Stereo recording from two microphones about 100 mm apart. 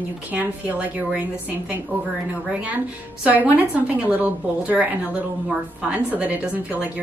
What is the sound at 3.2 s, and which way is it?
A woman's voice, 15° right (ahead or behind).